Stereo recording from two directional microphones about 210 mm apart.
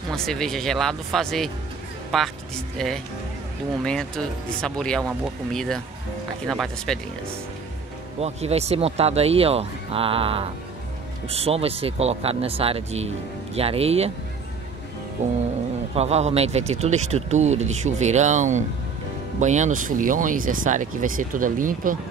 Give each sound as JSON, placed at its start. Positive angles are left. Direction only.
{"t": 0.1, "sound": "speech", "side_deg": 0}
{"t": 8.2, "sound": "speech", "side_deg": -30}
{"t": 15.2, "sound": "speech", "side_deg": -35}